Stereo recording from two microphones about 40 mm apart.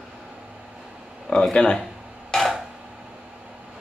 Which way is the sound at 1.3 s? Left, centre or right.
Centre.